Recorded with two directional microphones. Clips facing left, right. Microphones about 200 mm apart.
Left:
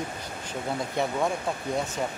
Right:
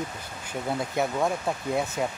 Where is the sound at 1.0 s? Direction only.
5° right (ahead or behind).